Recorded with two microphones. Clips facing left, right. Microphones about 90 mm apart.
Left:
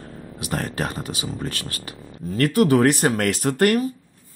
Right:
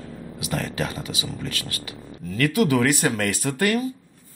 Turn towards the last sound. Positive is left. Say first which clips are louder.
# left 4 dB
turn(degrees=60)  # may be behind; listen again after turning